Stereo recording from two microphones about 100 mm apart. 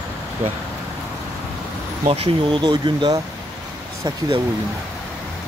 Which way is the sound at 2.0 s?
65° right (ahead or behind).